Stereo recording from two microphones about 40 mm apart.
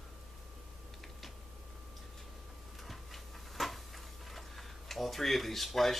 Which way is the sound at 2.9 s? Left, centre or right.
Centre.